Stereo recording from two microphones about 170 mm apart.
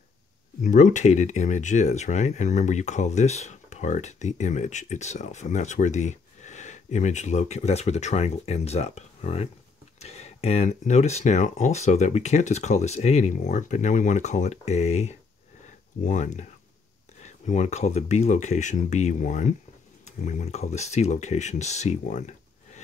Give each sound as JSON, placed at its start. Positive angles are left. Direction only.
{"t": 0.6, "sound": "speech", "side_deg": 50}